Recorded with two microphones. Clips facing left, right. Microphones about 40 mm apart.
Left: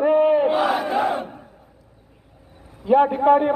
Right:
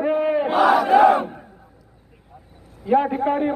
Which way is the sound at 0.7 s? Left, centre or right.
Right.